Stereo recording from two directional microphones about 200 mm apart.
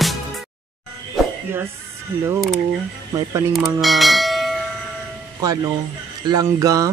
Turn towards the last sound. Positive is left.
turn(degrees=-15)  # may be behind; listen again after turning